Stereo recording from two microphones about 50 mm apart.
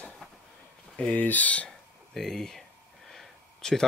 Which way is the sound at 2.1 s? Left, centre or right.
Centre.